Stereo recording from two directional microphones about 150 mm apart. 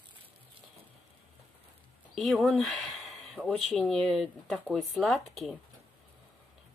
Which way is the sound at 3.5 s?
5° left (ahead or behind).